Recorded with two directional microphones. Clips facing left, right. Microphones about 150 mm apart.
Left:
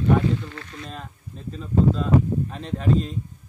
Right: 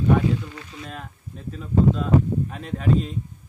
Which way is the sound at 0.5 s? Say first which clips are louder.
Even; 10° right (ahead or behind).